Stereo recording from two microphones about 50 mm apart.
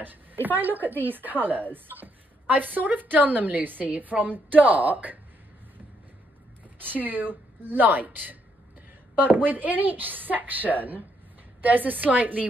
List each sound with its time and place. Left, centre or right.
0.0 s speech: right
6.8 s speech: right